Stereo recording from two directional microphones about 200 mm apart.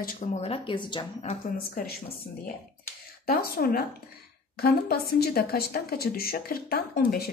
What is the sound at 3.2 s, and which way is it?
A woman's voice, 50° left (ahead or behind).